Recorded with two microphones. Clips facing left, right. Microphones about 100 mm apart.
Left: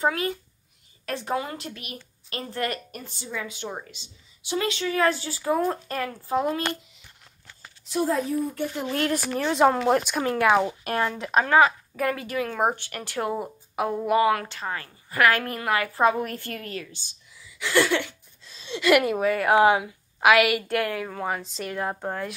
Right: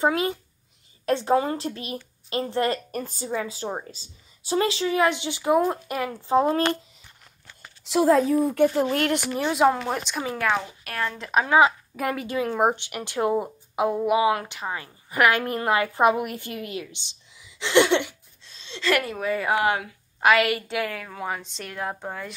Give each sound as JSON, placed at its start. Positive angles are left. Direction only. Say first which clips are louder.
{"t": 0.0, "sound": "a woman's voice", "louder": "right 2 dB", "side_deg": -20}
{"t": 2.9, "sound": "a woman's voice", "louder": "right 7 dB", "side_deg": -40}
{"t": 4.9, "sound": "a woman's voice", "louder": "right 1 dB", "side_deg": -20}
{"t": 7.8, "sound": "speech", "louder": "right 6 dB", "side_deg": -90}
{"t": 9.4, "sound": "a woman's voice", "louder": "left 1 dB", "side_deg": -5}
{"t": 10.8, "sound": "speech", "louder": "left 4 dB", "side_deg": 25}
{"t": 11.1, "sound": "a woman's voice", "louder": "left 3 dB", "side_deg": 5}
{"t": 11.3, "sound": "a woman's voice", "louder": "even", "side_deg": -10}
{"t": 18.4, "sound": "speech", "louder": "left 4 dB", "side_deg": 5}
{"t": 19.5, "sound": "speech", "louder": "left 6 dB", "side_deg": 20}
{"t": 19.8, "sound": "a woman's voice", "louder": "left 1 dB", "side_deg": 5}